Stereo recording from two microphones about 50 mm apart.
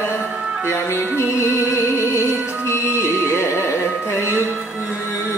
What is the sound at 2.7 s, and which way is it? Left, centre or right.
Music, left.